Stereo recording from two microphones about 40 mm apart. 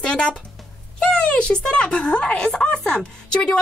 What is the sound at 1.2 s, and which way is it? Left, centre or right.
Speech, left.